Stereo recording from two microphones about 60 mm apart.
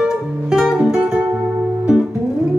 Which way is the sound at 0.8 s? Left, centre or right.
Centre.